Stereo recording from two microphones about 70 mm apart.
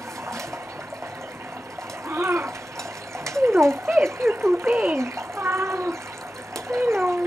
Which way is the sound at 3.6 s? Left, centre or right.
Right.